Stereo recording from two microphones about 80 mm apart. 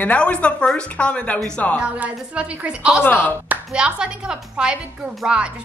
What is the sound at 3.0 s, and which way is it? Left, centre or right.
Speech, left.